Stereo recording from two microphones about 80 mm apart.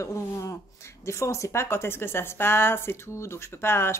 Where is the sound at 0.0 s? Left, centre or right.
Left.